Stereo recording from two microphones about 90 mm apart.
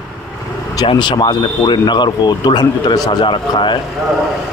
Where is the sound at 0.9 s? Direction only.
60° left (ahead or behind).